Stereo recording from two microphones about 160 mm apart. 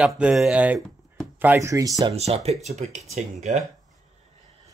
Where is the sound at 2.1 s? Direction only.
40° right (ahead or behind).